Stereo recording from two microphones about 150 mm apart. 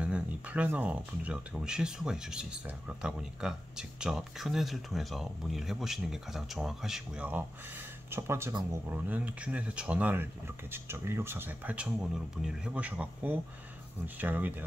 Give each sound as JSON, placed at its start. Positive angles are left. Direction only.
{"t": 0.0, "sound": "speech", "side_deg": -10}